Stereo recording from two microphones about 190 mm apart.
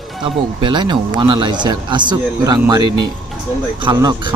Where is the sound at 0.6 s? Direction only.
25° right (ahead or behind).